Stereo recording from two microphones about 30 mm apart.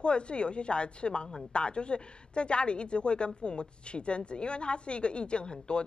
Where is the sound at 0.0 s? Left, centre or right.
Left.